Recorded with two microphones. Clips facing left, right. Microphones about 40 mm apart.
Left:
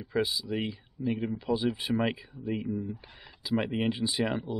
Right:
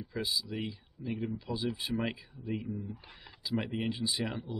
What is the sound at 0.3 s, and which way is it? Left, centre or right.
Speech, centre.